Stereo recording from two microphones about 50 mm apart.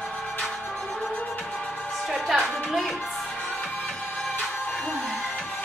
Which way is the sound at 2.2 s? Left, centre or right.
Centre.